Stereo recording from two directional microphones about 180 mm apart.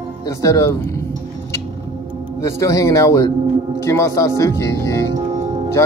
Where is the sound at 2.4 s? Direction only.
15° left (ahead or behind).